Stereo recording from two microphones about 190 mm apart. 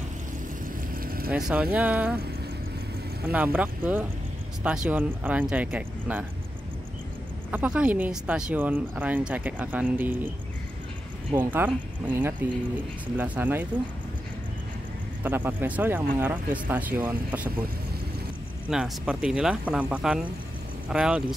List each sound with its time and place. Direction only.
0.9 s vehicle: 50° right (ahead or behind)
1.3 s speech: 5° right (ahead or behind)
3.3 s speech: 5° right (ahead or behind)
7.5 s speech: 5° right (ahead or behind)
11.3 s speech: 10° right (ahead or behind)
15.2 s speech: 10° right (ahead or behind)
18.7 s speech: 5° right (ahead or behind)